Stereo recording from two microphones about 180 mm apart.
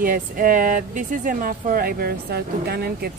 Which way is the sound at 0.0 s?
50° right (ahead or behind).